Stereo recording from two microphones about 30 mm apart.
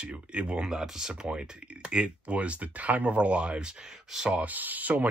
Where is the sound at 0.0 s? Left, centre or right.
Right.